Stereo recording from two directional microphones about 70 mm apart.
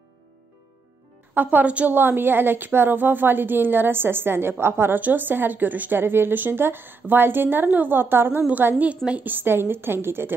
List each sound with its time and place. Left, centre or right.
1.3 s a woman's voice: right
8.6 s a woman's voice: right